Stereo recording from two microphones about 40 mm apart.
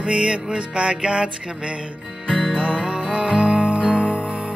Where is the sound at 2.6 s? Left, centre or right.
Right.